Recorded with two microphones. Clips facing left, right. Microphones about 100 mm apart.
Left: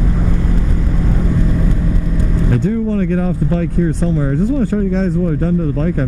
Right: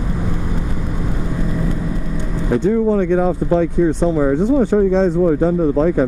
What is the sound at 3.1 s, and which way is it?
Speech, 15° right (ahead or behind).